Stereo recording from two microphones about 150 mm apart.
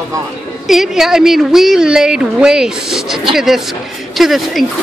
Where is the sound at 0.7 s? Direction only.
Centre (ahead or behind).